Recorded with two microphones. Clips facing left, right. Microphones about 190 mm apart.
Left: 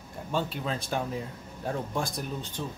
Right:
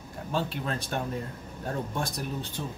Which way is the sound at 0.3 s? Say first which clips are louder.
Even; centre (ahead or behind).